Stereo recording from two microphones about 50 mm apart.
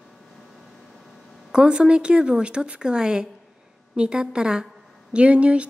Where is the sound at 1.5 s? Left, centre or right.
Centre.